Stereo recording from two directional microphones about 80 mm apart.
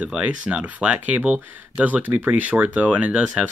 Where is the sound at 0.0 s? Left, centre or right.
Centre.